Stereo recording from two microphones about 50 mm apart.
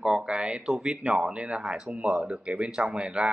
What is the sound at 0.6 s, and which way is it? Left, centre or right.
Speech, centre.